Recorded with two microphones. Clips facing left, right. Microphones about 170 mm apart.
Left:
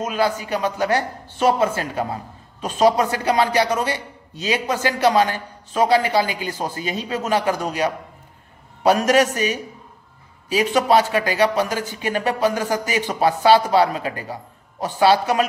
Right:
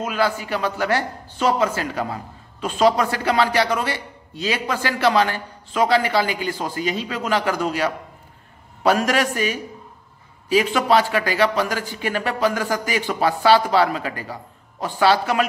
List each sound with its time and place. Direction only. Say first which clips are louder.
0.0 s speech: left 1 dB; 20° left (ahead or behind)
10.6 s speech: left 3 dB; 20° left (ahead or behind)